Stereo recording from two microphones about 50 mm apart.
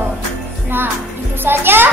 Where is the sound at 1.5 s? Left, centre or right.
Right.